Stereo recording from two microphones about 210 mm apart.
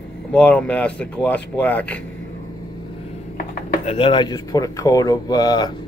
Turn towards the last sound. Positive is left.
turn(degrees=20)  # may be behind; listen again after turning